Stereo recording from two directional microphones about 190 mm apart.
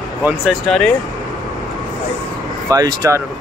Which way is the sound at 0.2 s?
Centre (ahead or behind).